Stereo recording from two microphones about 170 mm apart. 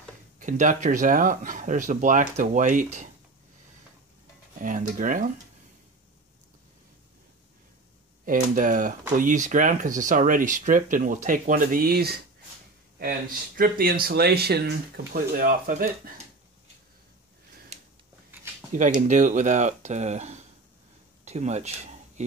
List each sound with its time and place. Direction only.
0.4 s speech: 50° right (ahead or behind)
4.6 s speech: 50° right (ahead or behind)
8.3 s speech: 50° right (ahead or behind); by 12.2 s 65° right (ahead or behind)
13.6 s speech: 60° right (ahead or behind)
15.1 s speech: 55° right (ahead or behind)
18.9 s speech: 45° right (ahead or behind)
21.3 s a sound: 40° right (ahead or behind)